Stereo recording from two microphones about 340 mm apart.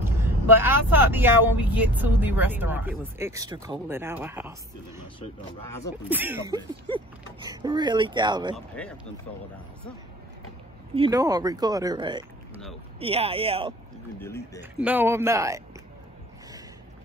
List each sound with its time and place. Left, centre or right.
0.0 s speech: centre
6.0 s speech: centre
8.8 s speech: centre
11.0 s speech: centre
14.2 s speech: centre
14.6 s speech: centre